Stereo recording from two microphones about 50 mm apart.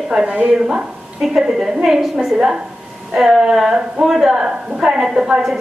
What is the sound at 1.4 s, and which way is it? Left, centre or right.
Speech, centre.